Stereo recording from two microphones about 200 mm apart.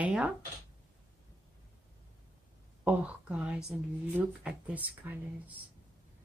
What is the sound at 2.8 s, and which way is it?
Speech, 5° right (ahead or behind).